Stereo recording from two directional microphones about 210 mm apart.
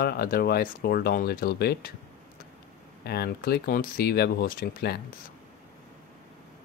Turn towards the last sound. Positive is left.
turn(degrees=45)  # may be behind; listen again after turning